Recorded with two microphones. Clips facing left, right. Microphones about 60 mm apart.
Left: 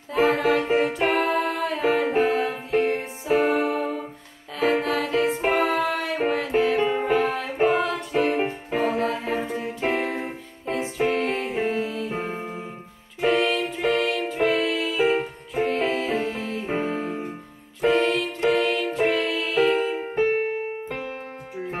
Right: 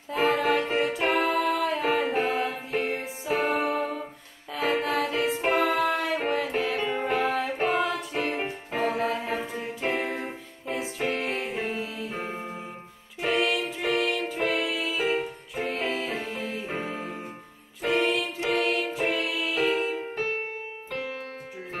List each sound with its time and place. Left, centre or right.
0.1 s music: centre
19.7 s music: left
20.2 s music: centre